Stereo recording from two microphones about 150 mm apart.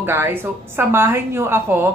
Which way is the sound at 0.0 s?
15° right (ahead or behind).